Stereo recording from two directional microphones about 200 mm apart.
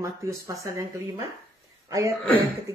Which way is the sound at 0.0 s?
15° right (ahead or behind).